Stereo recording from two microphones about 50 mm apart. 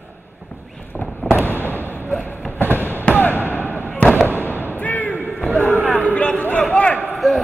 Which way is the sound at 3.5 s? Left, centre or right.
Left.